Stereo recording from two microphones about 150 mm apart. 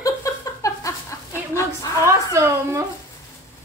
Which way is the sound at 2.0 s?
20° right (ahead or behind).